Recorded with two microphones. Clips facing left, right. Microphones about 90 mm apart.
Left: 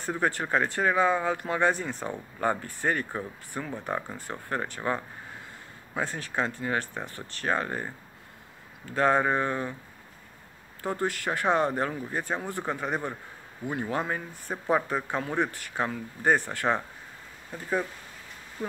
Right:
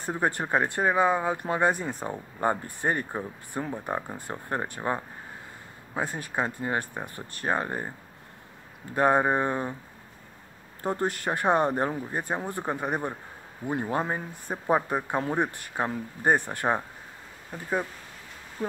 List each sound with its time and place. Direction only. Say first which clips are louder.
0.0 s speech: right 1 dB; 20° right (ahead or behind)
10.8 s speech: right 1 dB; 20° right (ahead or behind)